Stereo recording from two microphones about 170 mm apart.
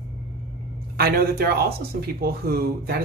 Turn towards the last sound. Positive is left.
turn(degrees=-65)  # may be behind; listen again after turning